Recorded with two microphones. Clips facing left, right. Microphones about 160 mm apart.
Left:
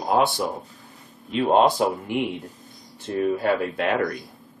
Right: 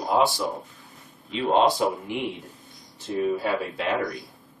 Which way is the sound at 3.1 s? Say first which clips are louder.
Left 3 dB; 60° left (ahead or behind).